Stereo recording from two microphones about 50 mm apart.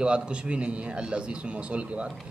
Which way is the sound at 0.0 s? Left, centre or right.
Right.